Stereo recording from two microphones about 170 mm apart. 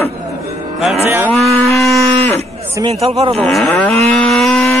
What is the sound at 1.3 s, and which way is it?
Livestock, centre (ahead or behind).